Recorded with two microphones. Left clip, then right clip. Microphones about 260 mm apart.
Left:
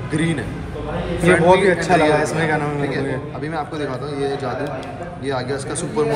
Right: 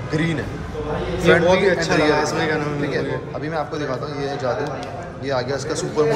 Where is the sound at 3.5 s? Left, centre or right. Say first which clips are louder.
Right 1 dB; centre.